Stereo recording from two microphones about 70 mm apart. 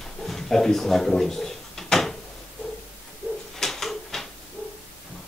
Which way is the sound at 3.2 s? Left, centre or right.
Centre.